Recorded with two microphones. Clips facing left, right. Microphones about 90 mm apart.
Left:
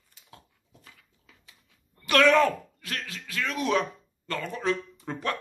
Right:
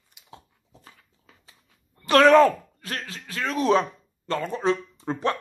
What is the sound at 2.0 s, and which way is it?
A man's voice, 35° right (ahead or behind).